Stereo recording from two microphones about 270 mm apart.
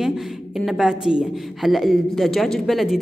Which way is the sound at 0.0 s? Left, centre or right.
Centre.